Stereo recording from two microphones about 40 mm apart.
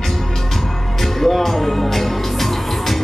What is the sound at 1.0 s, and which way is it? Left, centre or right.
Music, centre.